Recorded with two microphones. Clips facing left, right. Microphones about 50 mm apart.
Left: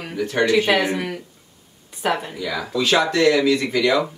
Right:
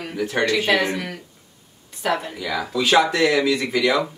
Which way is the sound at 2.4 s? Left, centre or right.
Centre.